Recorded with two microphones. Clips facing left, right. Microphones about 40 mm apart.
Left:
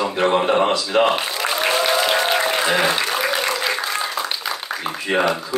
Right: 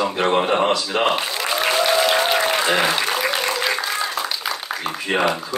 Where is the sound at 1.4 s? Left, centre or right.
Centre.